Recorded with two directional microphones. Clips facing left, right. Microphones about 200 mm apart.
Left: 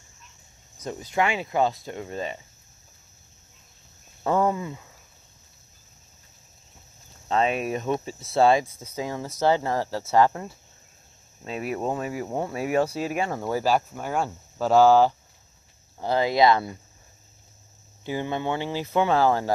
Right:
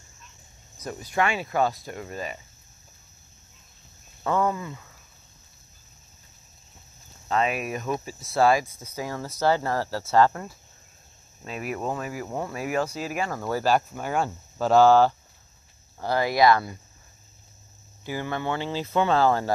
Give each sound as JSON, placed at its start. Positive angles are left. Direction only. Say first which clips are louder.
{"t": 0.8, "sound": "speech", "louder": "left 1 dB", "side_deg": 20}
{"t": 4.2, "sound": "speech", "louder": "left 2 dB", "side_deg": 30}
{"t": 7.2, "sound": "speech", "louder": "left 2 dB", "side_deg": 30}
{"t": 18.0, "sound": "speech", "louder": "left 2 dB", "side_deg": 20}